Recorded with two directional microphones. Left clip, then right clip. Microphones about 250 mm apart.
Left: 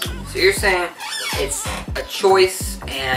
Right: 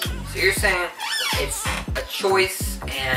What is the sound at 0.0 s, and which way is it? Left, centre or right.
Music, centre.